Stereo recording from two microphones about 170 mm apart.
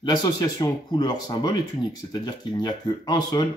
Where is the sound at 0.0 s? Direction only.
25° left (ahead or behind).